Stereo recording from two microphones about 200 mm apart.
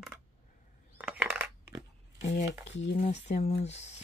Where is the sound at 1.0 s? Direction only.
5° right (ahead or behind).